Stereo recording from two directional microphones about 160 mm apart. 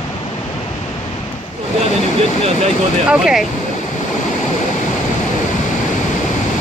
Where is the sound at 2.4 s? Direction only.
45° right (ahead or behind).